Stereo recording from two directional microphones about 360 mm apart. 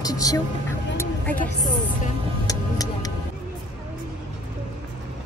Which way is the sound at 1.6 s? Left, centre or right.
Left.